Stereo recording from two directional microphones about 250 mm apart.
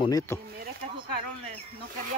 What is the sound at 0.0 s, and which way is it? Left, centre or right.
Speech, centre.